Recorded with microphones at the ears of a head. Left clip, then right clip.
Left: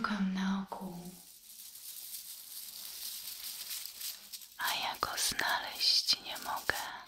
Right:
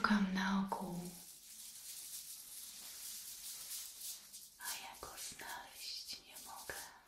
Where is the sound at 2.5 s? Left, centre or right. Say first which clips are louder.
Left 8 dB; left.